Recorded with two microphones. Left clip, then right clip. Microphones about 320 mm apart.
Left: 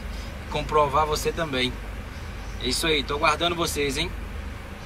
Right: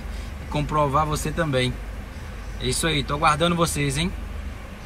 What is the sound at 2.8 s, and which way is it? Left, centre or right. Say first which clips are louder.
A man's voice: right 1 dB; centre.